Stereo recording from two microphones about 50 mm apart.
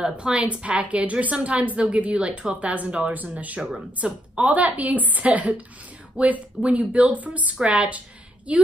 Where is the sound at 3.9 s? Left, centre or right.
Right.